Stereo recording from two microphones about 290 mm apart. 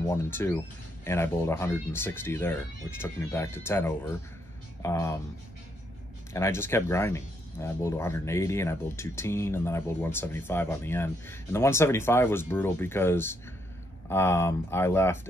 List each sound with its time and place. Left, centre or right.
0.0 s speech: centre
6.3 s speech: centre